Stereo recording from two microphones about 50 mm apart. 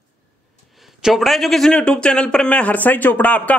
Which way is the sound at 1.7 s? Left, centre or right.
Centre.